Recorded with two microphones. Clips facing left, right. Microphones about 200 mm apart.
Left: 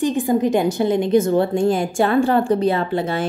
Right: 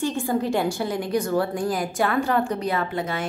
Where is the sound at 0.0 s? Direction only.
15° left (ahead or behind).